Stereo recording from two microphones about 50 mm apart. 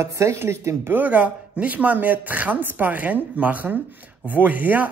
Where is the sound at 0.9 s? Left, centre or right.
Right.